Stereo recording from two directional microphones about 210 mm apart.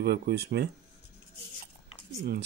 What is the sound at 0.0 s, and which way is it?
Speech, 50° right (ahead or behind).